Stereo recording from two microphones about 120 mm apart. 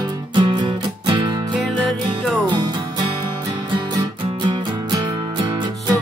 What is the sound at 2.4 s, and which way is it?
Music, 35° right (ahead or behind).